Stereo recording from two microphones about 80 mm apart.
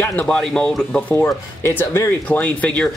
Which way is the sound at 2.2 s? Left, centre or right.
Centre.